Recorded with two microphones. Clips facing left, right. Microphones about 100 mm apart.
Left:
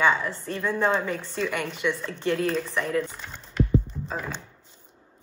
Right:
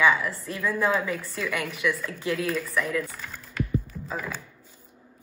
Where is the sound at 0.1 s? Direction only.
30° left (ahead or behind).